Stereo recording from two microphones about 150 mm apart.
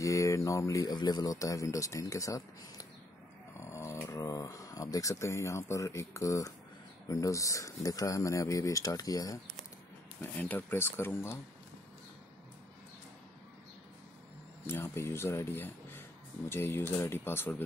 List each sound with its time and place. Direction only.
0.0 s speech: 20° left (ahead or behind)
3.5 s speech: 20° left (ahead or behind)
10.4 s speech: 15° left (ahead or behind)
14.7 s speech: 15° left (ahead or behind)